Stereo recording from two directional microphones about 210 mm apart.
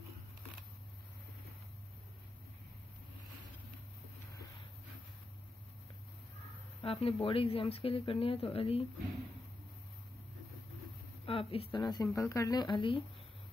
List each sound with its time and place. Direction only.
6.8 s speech: 25° left (ahead or behind)
11.2 s speech: 25° left (ahead or behind)